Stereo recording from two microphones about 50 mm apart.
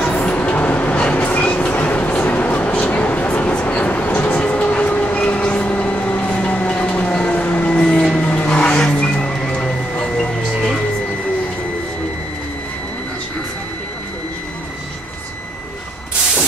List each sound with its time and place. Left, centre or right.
0.0 s train: left
8.2 s music: left